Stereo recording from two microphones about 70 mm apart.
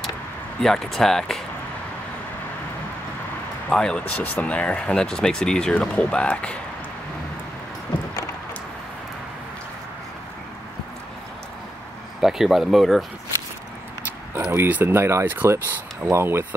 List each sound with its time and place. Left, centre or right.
0.6 s speech: centre
3.7 s speech: centre
12.2 s speech: centre
14.4 s speech: right
14.7 s speech: right